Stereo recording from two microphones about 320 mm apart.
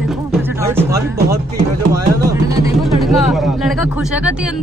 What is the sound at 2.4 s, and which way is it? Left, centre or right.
Speech, centre.